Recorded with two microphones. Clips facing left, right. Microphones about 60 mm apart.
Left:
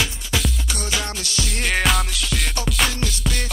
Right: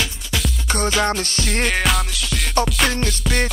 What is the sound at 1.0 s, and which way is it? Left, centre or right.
Music, right.